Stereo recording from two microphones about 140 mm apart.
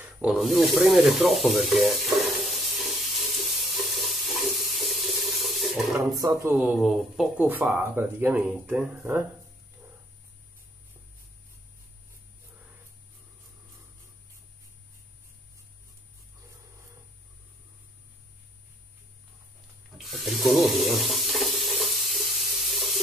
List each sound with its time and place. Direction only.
0.0 s a sound: 5° right (ahead or behind)
3.6 s water tap: centre (ahead or behind)
6.1 s speech: 25° right (ahead or behind)
6.6 s speech: 5° right (ahead or behind)
7.3 s speech: 10° right (ahead or behind)
20.0 s water tap: centre (ahead or behind)